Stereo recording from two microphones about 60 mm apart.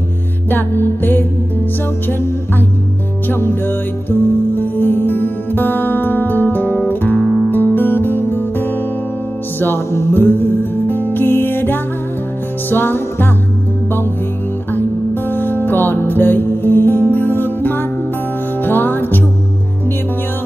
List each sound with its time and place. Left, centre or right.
0.5 s music: left
3.3 s music: left
14.7 s music: left